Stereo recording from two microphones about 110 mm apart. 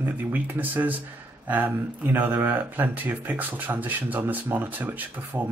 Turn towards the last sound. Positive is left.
turn(degrees=-20)  # may be behind; listen again after turning